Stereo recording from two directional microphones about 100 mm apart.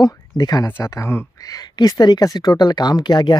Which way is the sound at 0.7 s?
25° left (ahead or behind).